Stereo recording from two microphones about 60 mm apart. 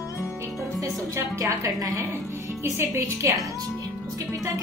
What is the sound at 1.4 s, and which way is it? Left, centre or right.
Speech, right.